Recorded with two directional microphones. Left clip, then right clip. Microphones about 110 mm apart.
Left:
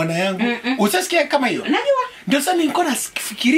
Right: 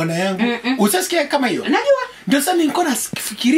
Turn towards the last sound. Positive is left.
turn(degrees=0)  # may be behind; listen again after turning